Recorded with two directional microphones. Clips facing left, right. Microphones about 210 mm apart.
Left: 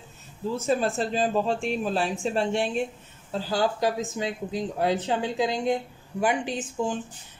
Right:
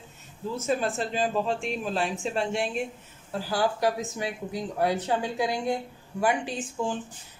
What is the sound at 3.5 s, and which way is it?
Speech, 20° left (ahead or behind).